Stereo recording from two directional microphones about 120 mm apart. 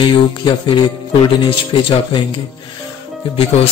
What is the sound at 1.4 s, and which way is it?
Speech, 40° left (ahead or behind).